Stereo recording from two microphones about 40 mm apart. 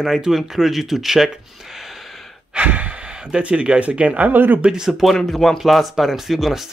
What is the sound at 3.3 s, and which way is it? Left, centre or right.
Speech, right.